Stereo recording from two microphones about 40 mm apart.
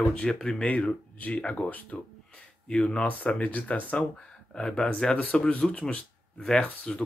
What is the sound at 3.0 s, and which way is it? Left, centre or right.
Speech, left.